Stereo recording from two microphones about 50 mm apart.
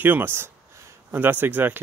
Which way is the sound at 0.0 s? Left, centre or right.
Right.